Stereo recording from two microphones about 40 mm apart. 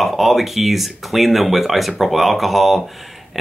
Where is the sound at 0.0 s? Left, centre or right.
Centre.